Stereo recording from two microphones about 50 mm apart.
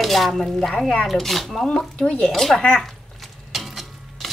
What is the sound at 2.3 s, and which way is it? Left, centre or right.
Speech, centre.